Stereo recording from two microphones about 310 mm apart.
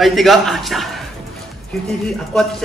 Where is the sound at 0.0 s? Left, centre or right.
Centre.